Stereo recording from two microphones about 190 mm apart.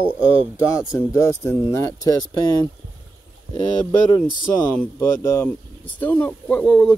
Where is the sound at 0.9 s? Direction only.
15° left (ahead or behind).